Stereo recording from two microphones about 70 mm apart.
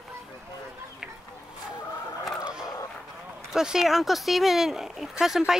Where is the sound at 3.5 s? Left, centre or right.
Centre.